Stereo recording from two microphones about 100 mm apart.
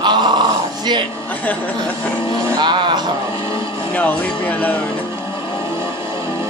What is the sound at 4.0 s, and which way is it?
Music, 15° left (ahead or behind).